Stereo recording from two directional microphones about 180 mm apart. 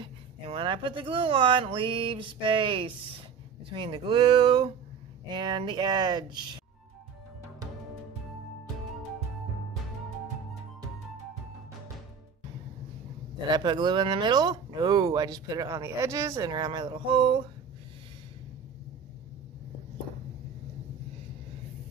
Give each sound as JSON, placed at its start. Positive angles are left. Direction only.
{"t": 0.0, "sound": "speech", "side_deg": -30}
{"t": 13.5, "sound": "speech", "side_deg": -25}